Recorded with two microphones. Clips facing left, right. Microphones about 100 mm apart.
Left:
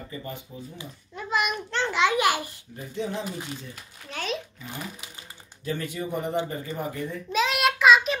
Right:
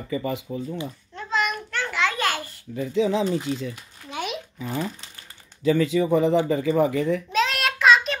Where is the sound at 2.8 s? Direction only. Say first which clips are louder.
Right 9 dB; 90° right.